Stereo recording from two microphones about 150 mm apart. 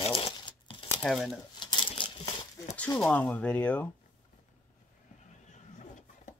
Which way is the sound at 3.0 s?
10° left (ahead or behind).